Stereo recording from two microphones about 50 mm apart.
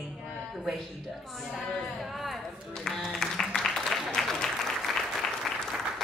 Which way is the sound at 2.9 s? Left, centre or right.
Centre.